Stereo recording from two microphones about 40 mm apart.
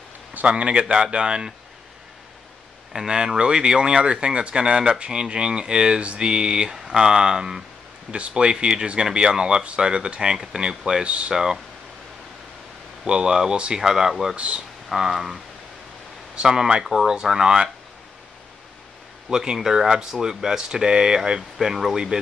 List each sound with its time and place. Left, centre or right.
0.5 s speech: right
2.9 s speech: centre
3.3 s speech: right
11.1 s speech: right
11.3 s speech: centre
13.0 s speech: centre
14.3 s speech: right
14.9 s speech: centre
16.3 s speech: centre
19.3 s speech: centre